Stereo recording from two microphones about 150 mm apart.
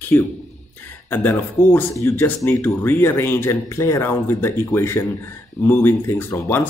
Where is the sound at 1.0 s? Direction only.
15° left (ahead or behind).